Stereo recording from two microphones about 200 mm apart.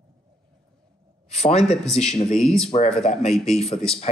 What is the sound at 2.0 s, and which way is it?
Speech, 35° left (ahead or behind).